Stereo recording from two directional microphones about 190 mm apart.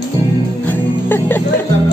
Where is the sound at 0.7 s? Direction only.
10° left (ahead or behind).